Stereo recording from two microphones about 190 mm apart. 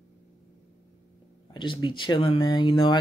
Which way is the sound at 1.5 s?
25° left (ahead or behind).